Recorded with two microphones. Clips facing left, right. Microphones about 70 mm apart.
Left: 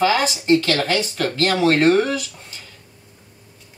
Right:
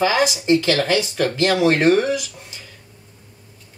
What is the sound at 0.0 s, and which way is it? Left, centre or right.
Speech, centre.